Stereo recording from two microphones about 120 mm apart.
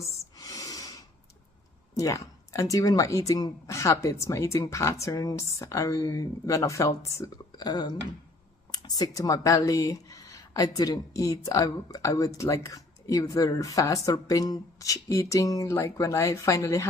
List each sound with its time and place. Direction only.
0.0 s a sound: 30° left (ahead or behind)
2.0 s speech: 25° left (ahead or behind)
7.5 s speech: 35° left (ahead or behind)